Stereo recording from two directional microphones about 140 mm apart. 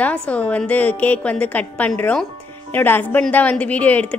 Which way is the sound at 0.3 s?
10° left (ahead or behind).